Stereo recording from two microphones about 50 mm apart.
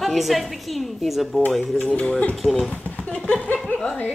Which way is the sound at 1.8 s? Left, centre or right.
Left.